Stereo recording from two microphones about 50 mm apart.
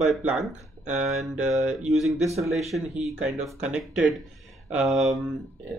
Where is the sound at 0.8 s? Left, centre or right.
Centre.